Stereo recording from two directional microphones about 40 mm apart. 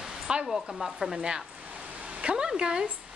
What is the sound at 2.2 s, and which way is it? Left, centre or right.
Speech, right.